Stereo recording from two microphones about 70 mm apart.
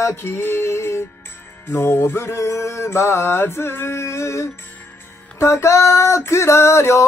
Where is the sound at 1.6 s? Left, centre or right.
Left.